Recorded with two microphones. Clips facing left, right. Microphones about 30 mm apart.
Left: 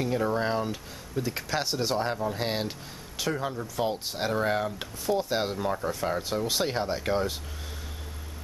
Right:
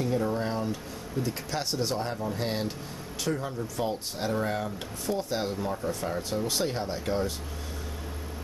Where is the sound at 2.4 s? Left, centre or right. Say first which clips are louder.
Right 2 dB; left.